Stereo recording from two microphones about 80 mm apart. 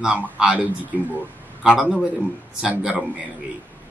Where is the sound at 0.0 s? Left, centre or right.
Centre.